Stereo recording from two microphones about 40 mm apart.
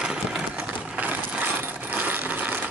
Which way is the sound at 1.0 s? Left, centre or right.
Right.